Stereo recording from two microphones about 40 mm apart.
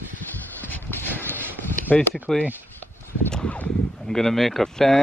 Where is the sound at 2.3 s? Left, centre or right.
Centre.